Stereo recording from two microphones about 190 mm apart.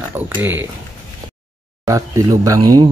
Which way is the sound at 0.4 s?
10° right (ahead or behind).